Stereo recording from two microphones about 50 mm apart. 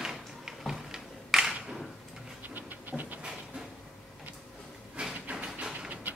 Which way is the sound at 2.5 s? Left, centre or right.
Right.